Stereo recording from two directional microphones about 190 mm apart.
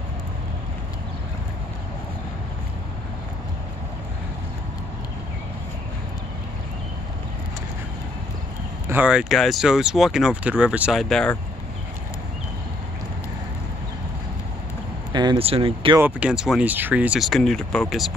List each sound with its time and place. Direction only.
8.8 s speech: 10° right (ahead or behind)
15.1 s speech: 25° right (ahead or behind)
16.0 s speech: 5° right (ahead or behind)